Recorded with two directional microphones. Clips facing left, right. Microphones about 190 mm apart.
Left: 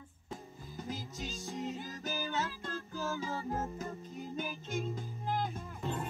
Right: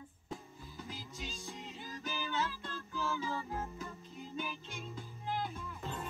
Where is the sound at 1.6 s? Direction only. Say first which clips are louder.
Left 9 dB; 40° left (ahead or behind).